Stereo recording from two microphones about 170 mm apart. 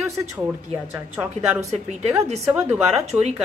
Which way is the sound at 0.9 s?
10° right (ahead or behind).